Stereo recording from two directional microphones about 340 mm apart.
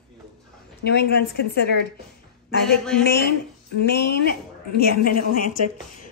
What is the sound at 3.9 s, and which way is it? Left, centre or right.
Speech, left.